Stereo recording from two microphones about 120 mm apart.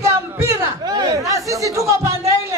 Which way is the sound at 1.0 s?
30° right (ahead or behind).